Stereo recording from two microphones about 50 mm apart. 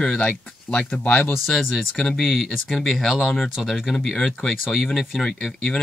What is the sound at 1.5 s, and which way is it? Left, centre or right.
Speech, centre.